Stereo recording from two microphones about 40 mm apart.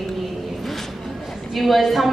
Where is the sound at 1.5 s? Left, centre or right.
Centre.